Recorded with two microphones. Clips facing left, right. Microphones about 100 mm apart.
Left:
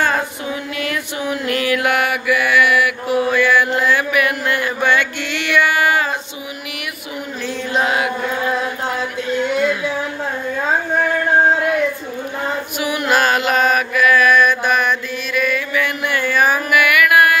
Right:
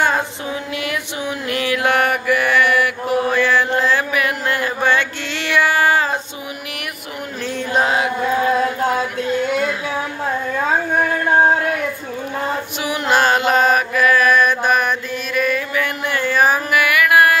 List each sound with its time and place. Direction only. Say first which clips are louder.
0.0 s music: even; 20° right (ahead or behind)
2.0 s mantra: right 1 dB; 40° right (ahead or behind)
7.7 s chant: right 1 dB; 35° right (ahead or behind)
12.8 s mantra: even; 25° right (ahead or behind)